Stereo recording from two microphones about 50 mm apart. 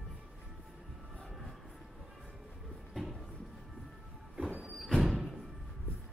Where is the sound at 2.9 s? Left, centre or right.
Centre.